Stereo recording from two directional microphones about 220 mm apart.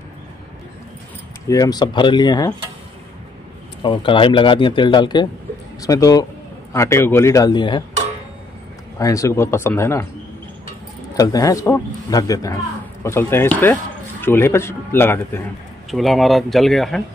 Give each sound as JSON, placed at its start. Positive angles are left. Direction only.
{"t": 1.5, "sound": "speech", "side_deg": 15}
{"t": 3.8, "sound": "speech", "side_deg": 20}
{"t": 8.9, "sound": "speech", "side_deg": 15}
{"t": 11.1, "sound": "speech", "side_deg": 15}
{"t": 15.9, "sound": "speech", "side_deg": 0}